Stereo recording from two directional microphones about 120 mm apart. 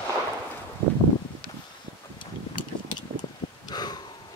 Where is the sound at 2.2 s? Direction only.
40° left (ahead or behind).